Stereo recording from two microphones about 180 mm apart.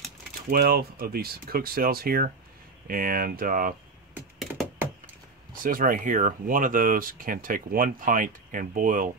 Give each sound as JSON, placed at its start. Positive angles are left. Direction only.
{"t": 0.5, "sound": "speech", "side_deg": -60}
{"t": 5.5, "sound": "speech", "side_deg": -50}